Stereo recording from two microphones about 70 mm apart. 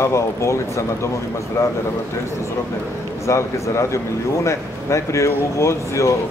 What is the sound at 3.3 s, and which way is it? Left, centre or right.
Speech, left.